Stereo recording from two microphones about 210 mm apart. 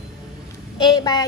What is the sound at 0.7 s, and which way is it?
Speech, 20° left (ahead or behind).